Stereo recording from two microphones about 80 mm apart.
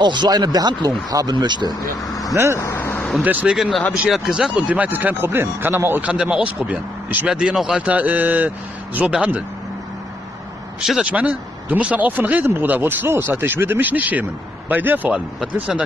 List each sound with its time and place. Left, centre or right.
0.0 s speech: right
2.0 s speech: left
2.3 s speech: right
2.6 s vehicle: left
3.3 s speech: right
4.1 s speech: centre; by 6.0 s right
6.0 s speech: centre
7.9 s speech: centre
10.8 s speech: centre
11.1 s speech: centre